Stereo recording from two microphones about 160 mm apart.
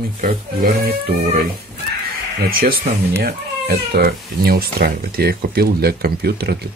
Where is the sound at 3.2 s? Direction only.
85° right.